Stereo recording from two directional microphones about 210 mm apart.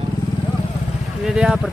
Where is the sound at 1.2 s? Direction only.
5° right (ahead or behind).